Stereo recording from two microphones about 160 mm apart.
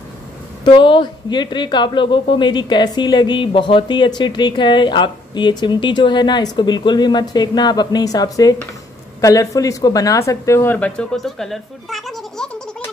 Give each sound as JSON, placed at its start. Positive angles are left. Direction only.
{"t": 0.7, "sound": "speech", "side_deg": 30}